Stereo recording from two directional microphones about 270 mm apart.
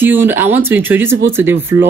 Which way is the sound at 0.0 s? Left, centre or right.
Centre.